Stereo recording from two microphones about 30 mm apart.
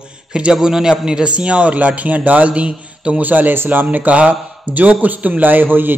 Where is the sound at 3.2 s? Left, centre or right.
Right.